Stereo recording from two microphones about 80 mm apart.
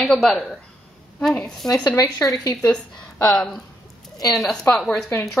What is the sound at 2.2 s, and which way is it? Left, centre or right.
Speech, left.